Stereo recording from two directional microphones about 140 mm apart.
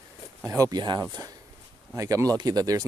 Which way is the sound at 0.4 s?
20° right (ahead or behind).